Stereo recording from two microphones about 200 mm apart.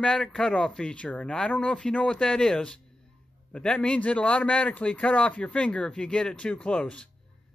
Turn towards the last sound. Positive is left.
turn(degrees=5)  # may be behind; listen again after turning